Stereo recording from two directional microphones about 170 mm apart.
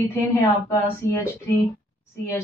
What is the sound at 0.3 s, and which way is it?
Speech, 15° left (ahead or behind).